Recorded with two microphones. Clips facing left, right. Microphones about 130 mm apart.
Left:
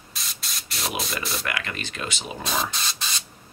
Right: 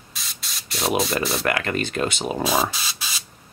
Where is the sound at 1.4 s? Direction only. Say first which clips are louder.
Right 8 dB; 45° right (ahead or behind).